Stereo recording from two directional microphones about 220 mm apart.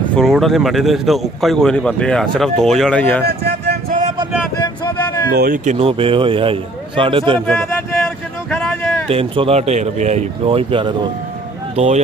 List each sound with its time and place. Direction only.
0.1 s a man's voice: centre (ahead or behind)
3.3 s a sound: 45° right (ahead or behind)
5.3 s a man's voice: 40° right (ahead or behind); by 7.4 s 25° right (ahead or behind)
7.4 s speech: centre (ahead or behind)
8.6 s a sound: centre (ahead or behind)
9.1 s a man's voice: 25° right (ahead or behind)